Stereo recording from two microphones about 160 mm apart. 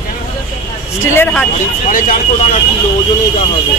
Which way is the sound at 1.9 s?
55° left (ahead or behind).